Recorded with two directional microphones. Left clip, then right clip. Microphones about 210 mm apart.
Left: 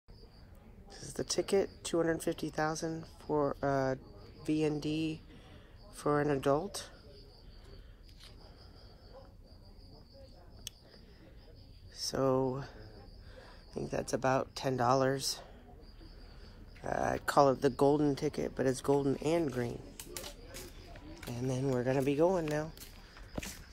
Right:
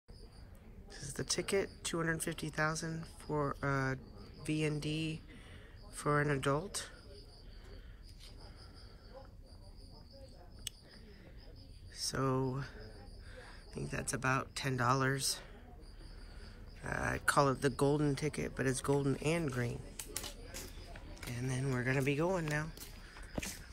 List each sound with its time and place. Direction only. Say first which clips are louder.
0.8 s speech: left 2 dB; 10° left (ahead or behind)
11.9 s speech: left 5 dB; 10° left (ahead or behind)
16.8 s speech: left 2 dB; 10° left (ahead or behind)
20.0 s a sound: even; 35° right (ahead or behind)
21.3 s speech: left 6 dB; 20° left (ahead or behind)